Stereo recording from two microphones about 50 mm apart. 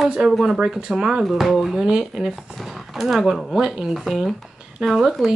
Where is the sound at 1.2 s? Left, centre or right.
Centre.